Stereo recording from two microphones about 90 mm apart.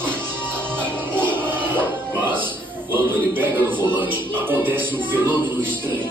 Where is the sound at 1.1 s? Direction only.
20° right (ahead or behind).